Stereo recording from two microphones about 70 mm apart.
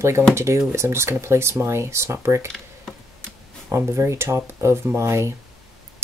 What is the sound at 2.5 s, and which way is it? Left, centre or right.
Computer keyboard, centre.